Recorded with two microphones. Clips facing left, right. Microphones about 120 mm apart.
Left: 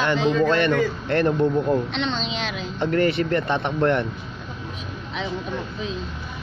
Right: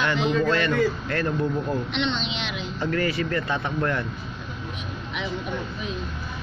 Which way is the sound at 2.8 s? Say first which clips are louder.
Left 5 dB; 25° left (ahead or behind).